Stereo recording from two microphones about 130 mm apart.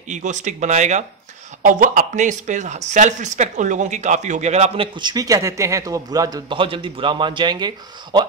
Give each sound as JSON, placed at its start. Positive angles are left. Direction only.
{"t": 0.1, "sound": "speech", "side_deg": -70}
{"t": 1.6, "sound": "speech", "side_deg": -85}
{"t": 4.9, "sound": "a man's voice", "side_deg": -30}
{"t": 6.6, "sound": "a man's voice", "side_deg": -40}